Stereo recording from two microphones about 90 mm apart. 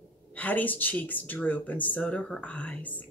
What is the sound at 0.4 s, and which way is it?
A woman's voice, 20° left (ahead or behind).